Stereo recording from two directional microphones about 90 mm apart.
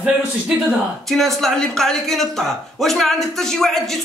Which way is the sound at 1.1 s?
Centre (ahead or behind).